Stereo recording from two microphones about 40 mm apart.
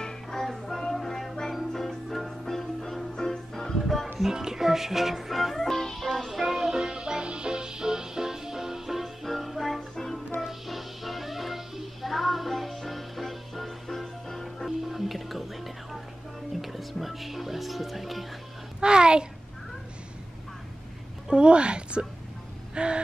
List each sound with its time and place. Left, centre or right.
0.0 s music: centre
4.2 s music: centre
6.0 s music: centre
9.8 s music: centre
10.4 s music: centre
14.8 s music: centre
16.6 s speech: centre
18.8 s a sound: right
21.3 s a sound: right
22.8 s gasp: right